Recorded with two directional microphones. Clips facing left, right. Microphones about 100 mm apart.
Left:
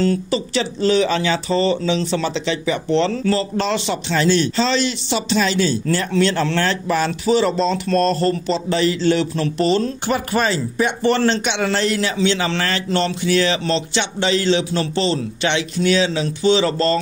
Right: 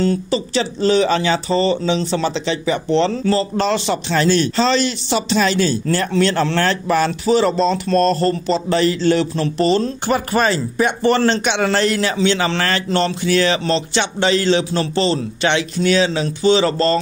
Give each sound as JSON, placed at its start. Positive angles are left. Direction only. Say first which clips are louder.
{"t": 0.0, "sound": "a man's voice", "louder": "right 1 dB", "side_deg": -30}